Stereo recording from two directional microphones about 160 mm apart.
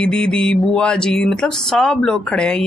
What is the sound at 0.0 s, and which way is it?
Speech, 5° left (ahead or behind).